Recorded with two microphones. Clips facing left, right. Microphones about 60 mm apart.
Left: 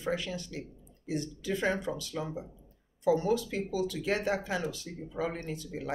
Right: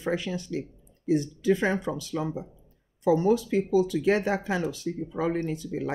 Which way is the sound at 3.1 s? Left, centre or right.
Right.